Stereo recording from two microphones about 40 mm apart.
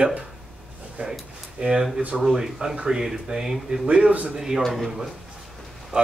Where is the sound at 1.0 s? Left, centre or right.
Centre.